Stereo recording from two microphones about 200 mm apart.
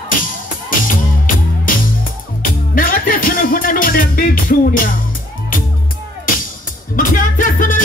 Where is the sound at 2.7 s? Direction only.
45° left (ahead or behind).